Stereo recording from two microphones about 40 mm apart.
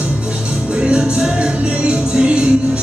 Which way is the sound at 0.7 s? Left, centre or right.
Right.